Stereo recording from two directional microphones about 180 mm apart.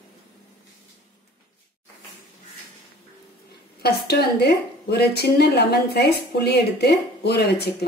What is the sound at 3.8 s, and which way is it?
A woman's voice, 65° left (ahead or behind).